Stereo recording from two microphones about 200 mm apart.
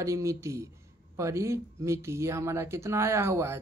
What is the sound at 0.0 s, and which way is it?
Speech, 15° right (ahead or behind).